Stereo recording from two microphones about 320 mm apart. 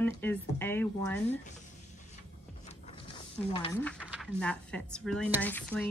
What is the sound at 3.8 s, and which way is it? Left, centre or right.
Speech, centre.